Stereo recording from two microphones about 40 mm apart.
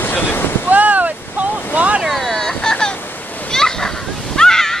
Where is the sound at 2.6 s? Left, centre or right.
Centre.